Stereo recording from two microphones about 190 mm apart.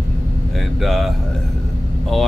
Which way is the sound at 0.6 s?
Centre (ahead or behind).